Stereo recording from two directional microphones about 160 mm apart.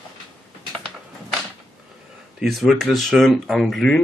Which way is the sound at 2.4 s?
Centre (ahead or behind).